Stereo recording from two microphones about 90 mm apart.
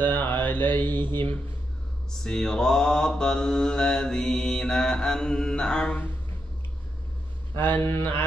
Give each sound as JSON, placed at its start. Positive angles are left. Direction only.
{"t": 0.0, "sound": "mantra", "side_deg": 25}
{"t": 2.0, "sound": "mantra", "side_deg": 10}
{"t": 7.5, "sound": "speech", "side_deg": 25}